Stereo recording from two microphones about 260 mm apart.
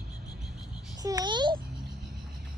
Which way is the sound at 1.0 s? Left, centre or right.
Centre.